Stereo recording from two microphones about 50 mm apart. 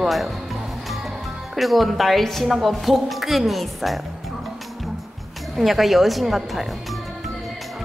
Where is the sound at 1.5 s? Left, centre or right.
Centre.